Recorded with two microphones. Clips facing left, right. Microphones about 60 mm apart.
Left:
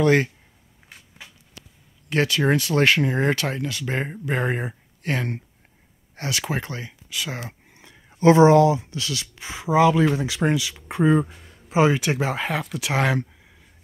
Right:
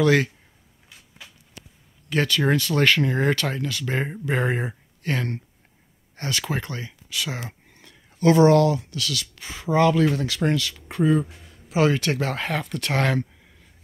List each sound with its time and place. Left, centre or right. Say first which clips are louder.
0.0 s speech: left 1 dB; left
2.1 s speech: left 1 dB; centre
5.0 s speech: left 1 dB; centre
7.7 s speech: left 2 dB; centre